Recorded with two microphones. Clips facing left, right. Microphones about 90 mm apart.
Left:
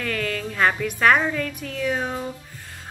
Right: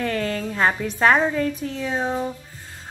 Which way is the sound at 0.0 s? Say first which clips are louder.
Right 3 dB; 30° right (ahead or behind).